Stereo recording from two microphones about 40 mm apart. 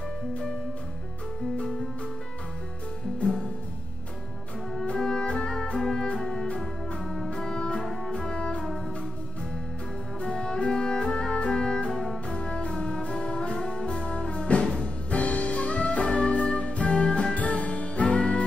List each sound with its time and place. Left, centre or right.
4.8 s music: left
10.2 s music: centre
12.3 s music: left